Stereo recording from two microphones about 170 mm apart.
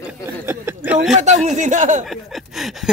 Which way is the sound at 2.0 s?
Centre (ahead or behind).